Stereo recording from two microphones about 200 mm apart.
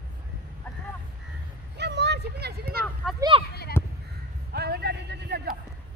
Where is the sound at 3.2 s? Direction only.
25° right (ahead or behind).